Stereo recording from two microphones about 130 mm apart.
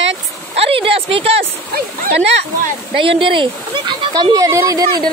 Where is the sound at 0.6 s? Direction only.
45° right (ahead or behind).